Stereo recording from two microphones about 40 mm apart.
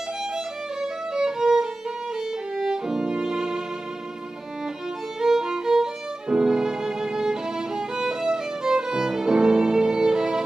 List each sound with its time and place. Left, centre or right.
0.7 s violin: centre
5.2 s violin: centre